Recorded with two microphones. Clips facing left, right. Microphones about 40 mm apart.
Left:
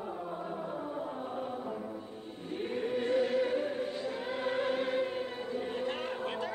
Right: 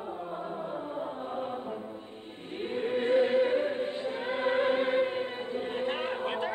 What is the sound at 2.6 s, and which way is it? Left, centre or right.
Choir, right.